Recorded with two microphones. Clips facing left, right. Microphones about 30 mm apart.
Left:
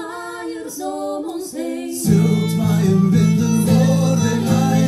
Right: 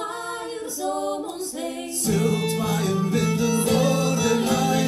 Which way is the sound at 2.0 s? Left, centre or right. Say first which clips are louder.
Left 5 dB; right.